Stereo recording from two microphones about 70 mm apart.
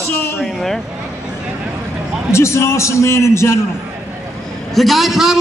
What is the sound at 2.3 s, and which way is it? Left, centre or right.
A man's voice, left.